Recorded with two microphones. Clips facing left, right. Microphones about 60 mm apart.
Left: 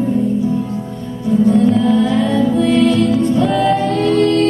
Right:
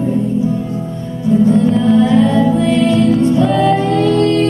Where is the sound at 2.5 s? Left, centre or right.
Right.